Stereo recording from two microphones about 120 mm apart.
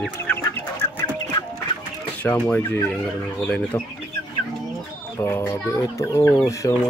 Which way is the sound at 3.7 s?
20° left (ahead or behind).